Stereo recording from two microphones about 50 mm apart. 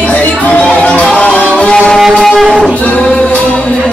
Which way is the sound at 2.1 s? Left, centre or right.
Centre.